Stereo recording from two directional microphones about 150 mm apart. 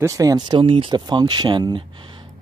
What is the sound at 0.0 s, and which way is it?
Speech, 20° right (ahead or behind).